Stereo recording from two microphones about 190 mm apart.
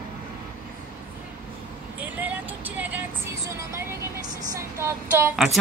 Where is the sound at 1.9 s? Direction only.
10° right (ahead or behind).